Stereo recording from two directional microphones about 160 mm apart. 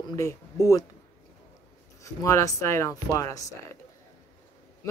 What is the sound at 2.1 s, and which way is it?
Speech, 20° left (ahead or behind).